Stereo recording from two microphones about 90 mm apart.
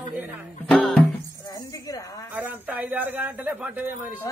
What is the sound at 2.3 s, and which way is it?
Speech, 20° right (ahead or behind).